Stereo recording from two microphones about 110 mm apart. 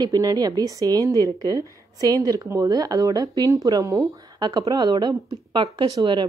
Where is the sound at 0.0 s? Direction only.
35° right (ahead or behind).